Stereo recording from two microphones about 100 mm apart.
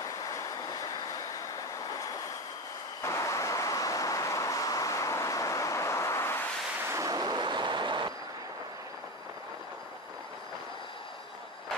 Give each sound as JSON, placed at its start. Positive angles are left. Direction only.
{"t": 0.0, "sound": "train", "side_deg": 35}
{"t": 3.0, "sound": "vehicle", "side_deg": 30}
{"t": 6.9, "sound": "a sound", "side_deg": -35}